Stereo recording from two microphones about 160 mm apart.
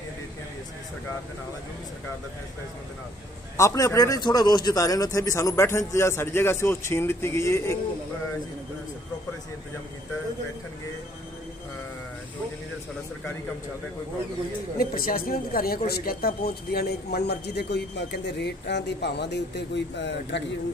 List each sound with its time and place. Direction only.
3.5 s a man's voice: 20° left (ahead or behind)
14.8 s speech: 65° left (ahead or behind); by 20.4 s 90° left